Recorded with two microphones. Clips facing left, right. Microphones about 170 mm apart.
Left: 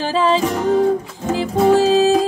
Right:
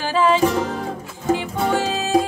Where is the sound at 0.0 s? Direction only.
35° left (ahead or behind).